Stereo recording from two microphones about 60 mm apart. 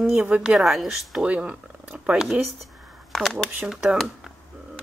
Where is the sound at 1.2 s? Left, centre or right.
Right.